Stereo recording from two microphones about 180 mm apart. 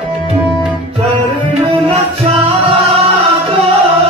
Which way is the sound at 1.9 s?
35° right (ahead or behind).